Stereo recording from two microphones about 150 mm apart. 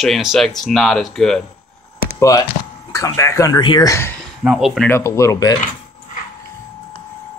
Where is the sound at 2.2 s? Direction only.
20° left (ahead or behind).